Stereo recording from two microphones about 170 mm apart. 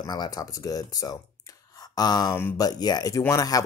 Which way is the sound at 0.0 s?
25° left (ahead or behind).